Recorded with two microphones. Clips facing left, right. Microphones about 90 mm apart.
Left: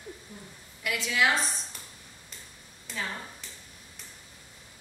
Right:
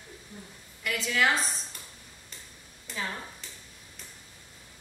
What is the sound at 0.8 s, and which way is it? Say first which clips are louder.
Speech: even; 5° left (ahead or behind).